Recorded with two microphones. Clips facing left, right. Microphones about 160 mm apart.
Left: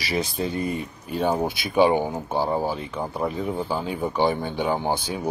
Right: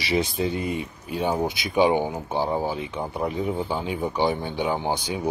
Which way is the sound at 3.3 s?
15° right (ahead or behind).